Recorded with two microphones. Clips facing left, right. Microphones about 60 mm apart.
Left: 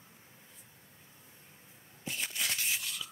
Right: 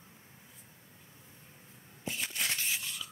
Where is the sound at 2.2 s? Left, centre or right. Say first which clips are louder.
Right 1 dB; right.